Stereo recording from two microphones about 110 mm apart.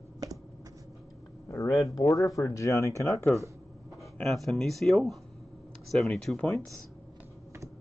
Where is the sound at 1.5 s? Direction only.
30° left (ahead or behind).